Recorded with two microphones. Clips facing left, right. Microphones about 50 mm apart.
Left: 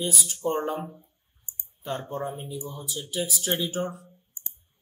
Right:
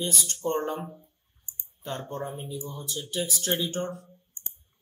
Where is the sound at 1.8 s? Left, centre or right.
Centre.